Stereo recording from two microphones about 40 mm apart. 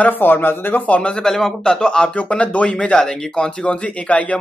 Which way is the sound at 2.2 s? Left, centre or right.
Left.